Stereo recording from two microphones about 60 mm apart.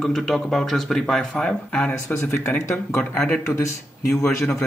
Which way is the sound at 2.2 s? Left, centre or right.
Left.